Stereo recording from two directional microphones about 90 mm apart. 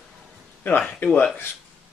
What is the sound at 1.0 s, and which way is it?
Speech, 20° left (ahead or behind).